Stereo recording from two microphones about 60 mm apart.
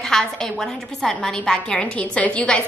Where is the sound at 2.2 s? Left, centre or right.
Left.